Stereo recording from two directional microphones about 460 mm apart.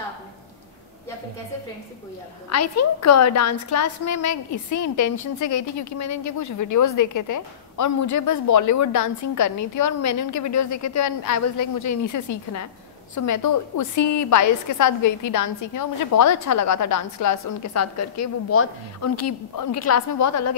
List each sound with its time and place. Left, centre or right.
2.5 s a woman's voice: left